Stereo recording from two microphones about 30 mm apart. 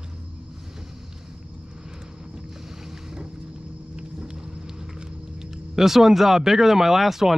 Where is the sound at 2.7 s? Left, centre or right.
Centre.